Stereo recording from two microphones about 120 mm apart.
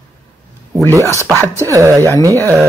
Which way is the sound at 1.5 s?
25° right (ahead or behind).